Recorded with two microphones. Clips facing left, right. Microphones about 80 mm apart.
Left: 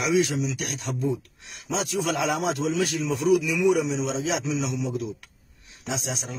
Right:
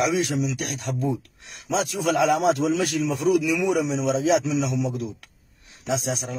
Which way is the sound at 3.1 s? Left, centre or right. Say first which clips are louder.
Even; right.